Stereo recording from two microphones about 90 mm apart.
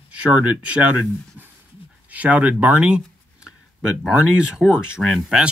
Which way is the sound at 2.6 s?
15° right (ahead or behind).